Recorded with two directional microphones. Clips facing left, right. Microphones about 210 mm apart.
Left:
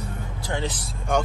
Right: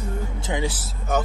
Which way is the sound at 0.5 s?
10° right (ahead or behind).